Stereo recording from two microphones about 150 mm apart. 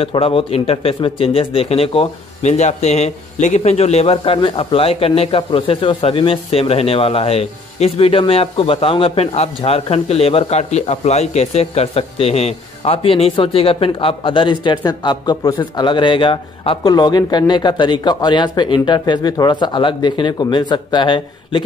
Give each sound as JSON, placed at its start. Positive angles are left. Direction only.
{"t": 0.0, "sound": "speech", "side_deg": 40}